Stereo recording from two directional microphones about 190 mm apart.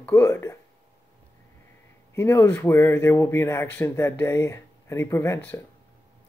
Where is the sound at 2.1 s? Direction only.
15° left (ahead or behind).